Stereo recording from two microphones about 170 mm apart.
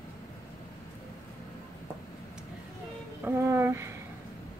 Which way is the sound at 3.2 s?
15° right (ahead or behind).